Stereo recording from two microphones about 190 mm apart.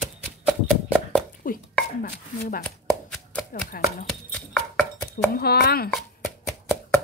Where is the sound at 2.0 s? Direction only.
50° left (ahead or behind).